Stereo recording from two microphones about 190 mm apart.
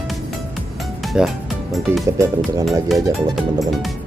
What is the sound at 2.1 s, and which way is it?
Speech, 15° right (ahead or behind).